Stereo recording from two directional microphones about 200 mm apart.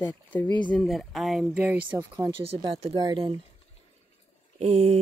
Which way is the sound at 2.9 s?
25° right (ahead or behind).